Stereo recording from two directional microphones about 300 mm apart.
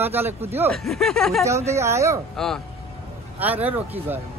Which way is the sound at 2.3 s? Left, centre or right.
Centre.